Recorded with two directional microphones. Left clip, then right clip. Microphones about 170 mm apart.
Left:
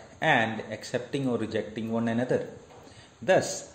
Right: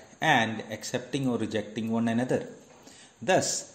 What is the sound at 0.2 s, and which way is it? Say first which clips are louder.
A man's voice: even; 40° right (ahead or behind).